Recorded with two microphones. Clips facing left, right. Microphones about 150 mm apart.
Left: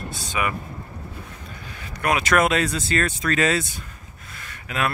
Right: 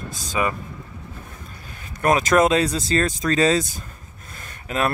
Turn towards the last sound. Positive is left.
turn(degrees=-35)  # may be behind; listen again after turning